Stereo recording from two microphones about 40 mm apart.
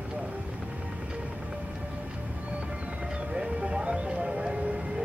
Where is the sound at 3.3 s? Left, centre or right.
Right.